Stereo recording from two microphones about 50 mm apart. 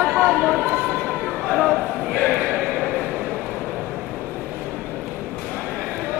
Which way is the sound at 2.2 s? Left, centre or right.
Left.